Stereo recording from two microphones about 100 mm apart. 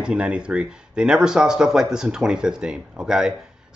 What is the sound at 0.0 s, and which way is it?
Speech, 10° right (ahead or behind).